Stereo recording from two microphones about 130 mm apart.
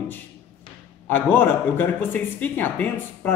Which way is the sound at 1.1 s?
15° left (ahead or behind).